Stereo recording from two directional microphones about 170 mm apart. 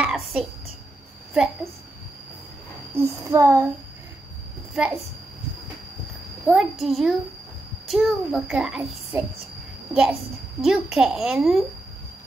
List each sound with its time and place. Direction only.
0.0 s a sound: 5° right (ahead or behind)
1.3 s a child's voice: centre (ahead or behind)
2.9 s a sound: 15° right (ahead or behind)
4.7 s a child's voice: 5° right (ahead or behind)
6.4 s a child's voice: centre (ahead or behind)
10.6 s a child's voice: 5° right (ahead or behind)